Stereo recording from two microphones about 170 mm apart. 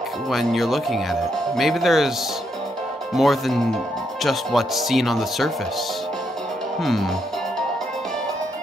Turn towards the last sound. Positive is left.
turn(degrees=0)  # may be behind; listen again after turning